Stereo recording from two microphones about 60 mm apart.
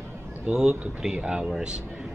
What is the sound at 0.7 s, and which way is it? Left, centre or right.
Speech, right.